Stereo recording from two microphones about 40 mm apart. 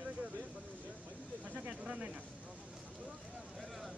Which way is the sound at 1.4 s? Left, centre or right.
Right.